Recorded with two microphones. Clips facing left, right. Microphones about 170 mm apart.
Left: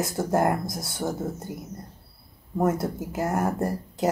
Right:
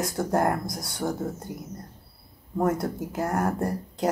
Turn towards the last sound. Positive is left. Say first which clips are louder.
# left 1 dB
turn(degrees=5)  # may be behind; listen again after turning